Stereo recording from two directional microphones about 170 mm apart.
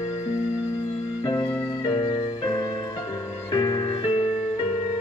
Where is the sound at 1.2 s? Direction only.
20° left (ahead or behind).